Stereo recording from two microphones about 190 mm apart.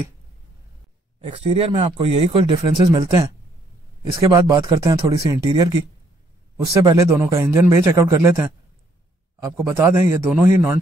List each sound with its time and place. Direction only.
1.2 s a man's voice: 30° right (ahead or behind); by 10.8 s 10° right (ahead or behind)